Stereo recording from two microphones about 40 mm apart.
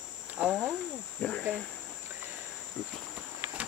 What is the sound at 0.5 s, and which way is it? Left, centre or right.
Cricket, centre.